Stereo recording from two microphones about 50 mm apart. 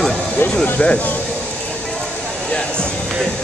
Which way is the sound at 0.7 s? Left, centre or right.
Left.